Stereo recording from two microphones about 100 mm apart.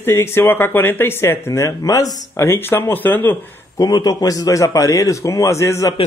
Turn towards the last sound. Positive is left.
turn(degrees=30)  # may be behind; listen again after turning